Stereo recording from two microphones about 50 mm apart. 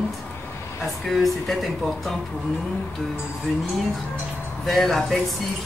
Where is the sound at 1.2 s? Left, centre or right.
Centre.